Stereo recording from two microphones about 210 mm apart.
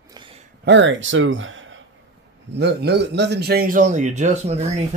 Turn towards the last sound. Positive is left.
turn(degrees=-30)  # may be behind; listen again after turning